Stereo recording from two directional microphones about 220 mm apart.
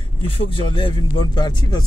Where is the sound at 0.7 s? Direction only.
20° left (ahead or behind).